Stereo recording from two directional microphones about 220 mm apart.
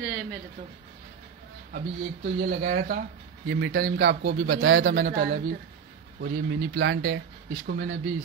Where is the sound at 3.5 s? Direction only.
50° right (ahead or behind).